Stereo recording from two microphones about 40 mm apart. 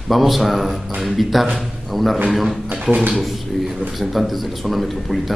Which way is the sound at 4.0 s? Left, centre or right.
Centre.